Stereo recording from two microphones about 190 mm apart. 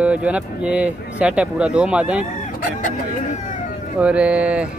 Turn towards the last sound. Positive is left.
turn(degrees=-5)  # may be behind; listen again after turning